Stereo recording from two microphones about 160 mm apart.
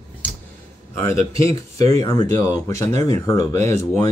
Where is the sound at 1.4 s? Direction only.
20° left (ahead or behind).